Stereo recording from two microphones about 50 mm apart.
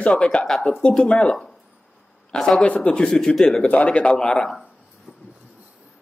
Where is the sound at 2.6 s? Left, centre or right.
Left; by 3.6 s centre.